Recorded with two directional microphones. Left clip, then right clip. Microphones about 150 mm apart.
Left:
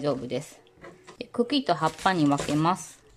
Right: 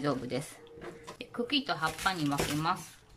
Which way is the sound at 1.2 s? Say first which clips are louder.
Left 6 dB; 35° left (ahead or behind).